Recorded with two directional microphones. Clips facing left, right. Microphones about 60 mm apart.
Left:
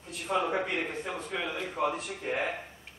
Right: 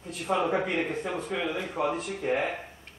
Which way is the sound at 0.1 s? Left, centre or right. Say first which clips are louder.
Right 3 dB; centre.